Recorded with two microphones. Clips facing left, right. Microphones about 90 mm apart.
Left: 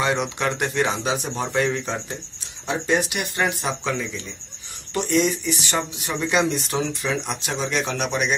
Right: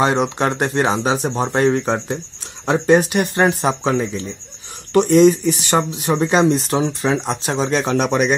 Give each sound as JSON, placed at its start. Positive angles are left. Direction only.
{"t": 0.0, "sound": "speech", "side_deg": -35}
{"t": 6.2, "sound": "speech", "side_deg": -35}